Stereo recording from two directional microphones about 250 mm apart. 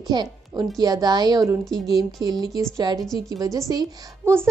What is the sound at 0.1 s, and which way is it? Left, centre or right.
A woman's voice, centre.